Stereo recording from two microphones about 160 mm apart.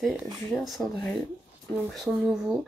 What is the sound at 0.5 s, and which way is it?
Speech, centre (ahead or behind).